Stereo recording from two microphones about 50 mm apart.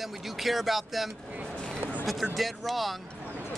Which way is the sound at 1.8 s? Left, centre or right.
Right.